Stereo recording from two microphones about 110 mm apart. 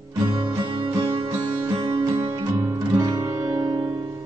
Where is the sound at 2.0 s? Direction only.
30° right (ahead or behind).